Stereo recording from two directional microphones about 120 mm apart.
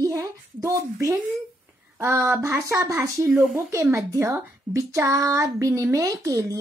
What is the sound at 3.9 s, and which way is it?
A child's voice, 25° right (ahead or behind).